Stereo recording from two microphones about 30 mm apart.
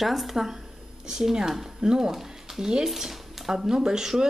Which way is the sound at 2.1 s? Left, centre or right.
Centre.